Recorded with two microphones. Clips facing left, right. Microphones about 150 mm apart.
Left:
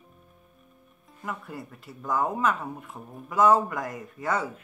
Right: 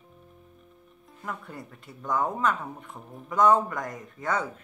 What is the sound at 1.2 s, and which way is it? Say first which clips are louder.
Speech: left 2 dB; 5° left (ahead or behind).